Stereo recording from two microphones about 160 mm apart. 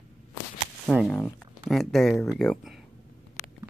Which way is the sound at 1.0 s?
10° left (ahead or behind).